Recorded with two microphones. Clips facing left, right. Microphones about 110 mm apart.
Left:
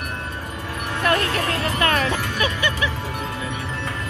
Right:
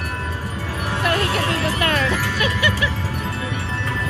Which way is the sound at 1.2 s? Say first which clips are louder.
Right 2 dB; 30° right (ahead or behind).